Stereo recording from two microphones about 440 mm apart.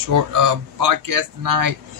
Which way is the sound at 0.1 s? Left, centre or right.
Right.